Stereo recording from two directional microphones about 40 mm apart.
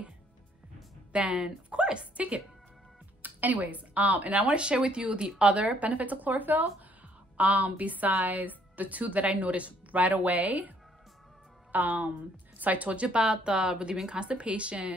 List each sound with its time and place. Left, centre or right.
1.1 s a woman's voice: right
3.2 s a woman's voice: right
11.7 s a woman's voice: right